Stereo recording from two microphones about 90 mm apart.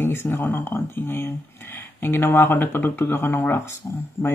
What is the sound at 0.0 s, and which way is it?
Speech, 25° left (ahead or behind).